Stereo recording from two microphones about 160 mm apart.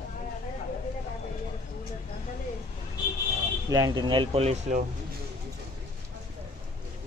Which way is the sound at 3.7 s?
25° right (ahead or behind).